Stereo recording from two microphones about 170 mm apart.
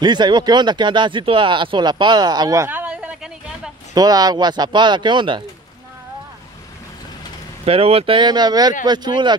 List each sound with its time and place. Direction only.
0.0 s speech: 25° right (ahead or behind); by 3.7 s 5° right (ahead or behind)
3.9 s speech: 20° right (ahead or behind)
7.6 s speech: 35° right (ahead or behind)